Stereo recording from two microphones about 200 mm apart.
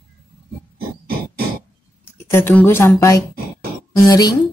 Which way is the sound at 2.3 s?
10° left (ahead or behind).